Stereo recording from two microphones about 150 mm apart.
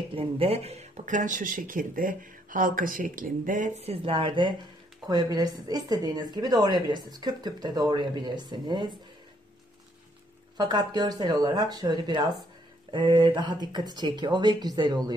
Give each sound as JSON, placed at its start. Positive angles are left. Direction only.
{"t": 0.1, "sound": "speech", "side_deg": -40}
{"t": 10.6, "sound": "speech", "side_deg": -30}